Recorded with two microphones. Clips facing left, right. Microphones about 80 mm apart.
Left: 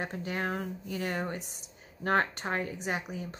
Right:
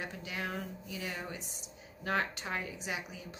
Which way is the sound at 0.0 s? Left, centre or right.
Left.